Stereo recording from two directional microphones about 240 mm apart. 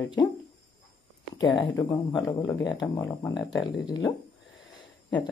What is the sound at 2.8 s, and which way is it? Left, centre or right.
Speech, centre.